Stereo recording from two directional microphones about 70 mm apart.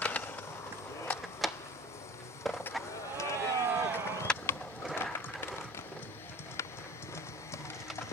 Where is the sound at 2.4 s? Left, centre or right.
Centre.